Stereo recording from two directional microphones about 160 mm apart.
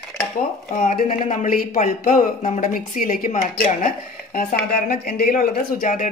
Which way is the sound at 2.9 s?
60° left (ahead or behind).